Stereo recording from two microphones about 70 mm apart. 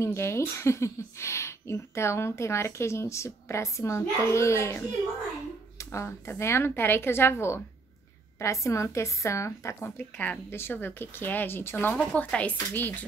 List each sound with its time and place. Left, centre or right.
0.0 s speech: left
9.8 s speech: left
12.0 s speech: centre